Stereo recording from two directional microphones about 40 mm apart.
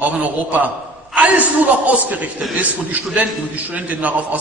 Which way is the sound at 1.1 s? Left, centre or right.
Right.